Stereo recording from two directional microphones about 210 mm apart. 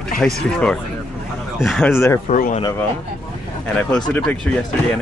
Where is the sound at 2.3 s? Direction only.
35° left (ahead or behind).